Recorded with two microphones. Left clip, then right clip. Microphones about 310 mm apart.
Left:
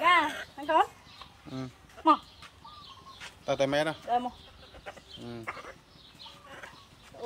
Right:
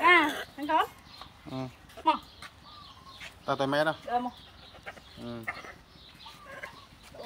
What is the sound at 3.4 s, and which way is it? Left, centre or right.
Speech, centre.